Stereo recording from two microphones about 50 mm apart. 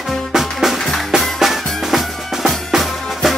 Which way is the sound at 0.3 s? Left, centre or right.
Centre.